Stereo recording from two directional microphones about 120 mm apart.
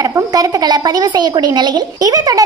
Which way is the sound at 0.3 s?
35° right (ahead or behind).